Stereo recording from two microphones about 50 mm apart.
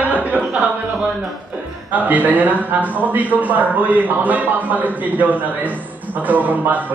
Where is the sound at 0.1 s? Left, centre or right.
Right.